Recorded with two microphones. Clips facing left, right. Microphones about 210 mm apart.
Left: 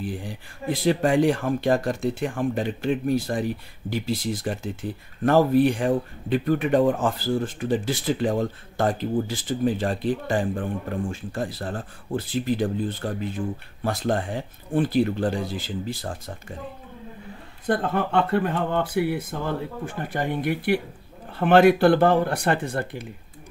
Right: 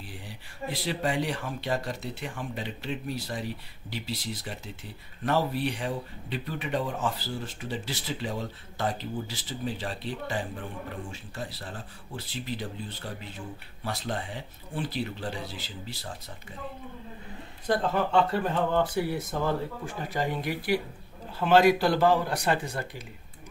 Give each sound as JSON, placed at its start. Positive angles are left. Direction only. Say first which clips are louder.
{"t": 0.0, "sound": "speech", "louder": "left 12 dB", "side_deg": 50}
{"t": 17.6, "sound": "speech", "louder": "left 3 dB", "side_deg": 55}